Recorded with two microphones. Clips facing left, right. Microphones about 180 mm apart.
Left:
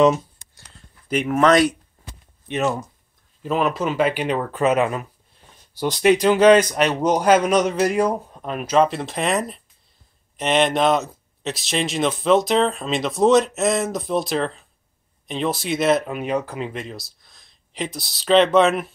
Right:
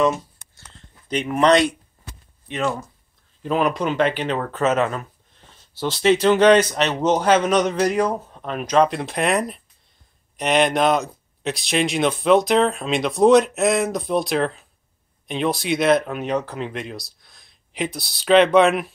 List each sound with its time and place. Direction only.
2.4 s speech: 20° left (ahead or behind)
3.4 s speech: 5° left (ahead or behind)